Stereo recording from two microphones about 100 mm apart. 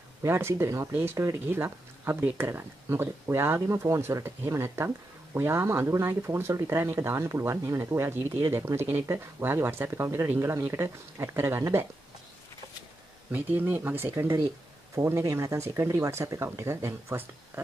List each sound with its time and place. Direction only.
0.2 s speech: 25° right (ahead or behind)
13.3 s speech: 20° right (ahead or behind)